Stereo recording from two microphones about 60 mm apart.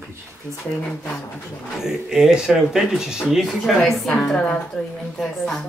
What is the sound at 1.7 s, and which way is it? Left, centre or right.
A man's voice, centre.